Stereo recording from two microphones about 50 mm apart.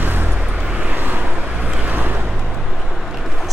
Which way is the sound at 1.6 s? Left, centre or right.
Right.